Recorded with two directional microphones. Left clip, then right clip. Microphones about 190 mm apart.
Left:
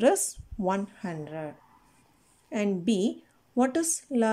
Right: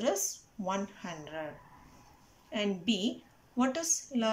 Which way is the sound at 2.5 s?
35° left (ahead or behind).